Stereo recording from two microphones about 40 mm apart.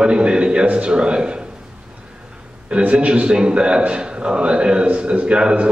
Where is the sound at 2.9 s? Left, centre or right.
Right.